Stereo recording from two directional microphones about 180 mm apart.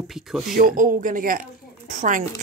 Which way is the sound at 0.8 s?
50° right (ahead or behind).